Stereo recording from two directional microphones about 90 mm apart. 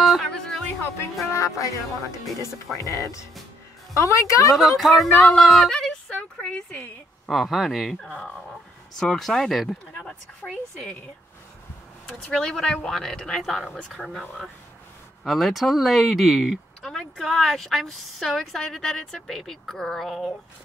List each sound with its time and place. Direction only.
0.0 s music: centre (ahead or behind)
1.3 s speech: 35° left (ahead or behind)
4.6 s a woman's voice: centre (ahead or behind)
12.1 s a woman's voice: 10° left (ahead or behind)
15.2 s speech: centre (ahead or behind)